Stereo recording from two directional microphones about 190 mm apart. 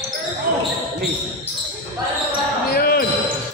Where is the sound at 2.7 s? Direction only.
55° left (ahead or behind).